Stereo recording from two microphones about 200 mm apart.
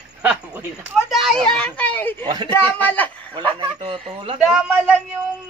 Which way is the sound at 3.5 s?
25° right (ahead or behind).